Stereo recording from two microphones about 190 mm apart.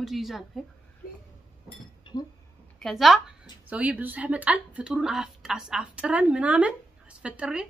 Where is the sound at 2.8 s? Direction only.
Centre (ahead or behind).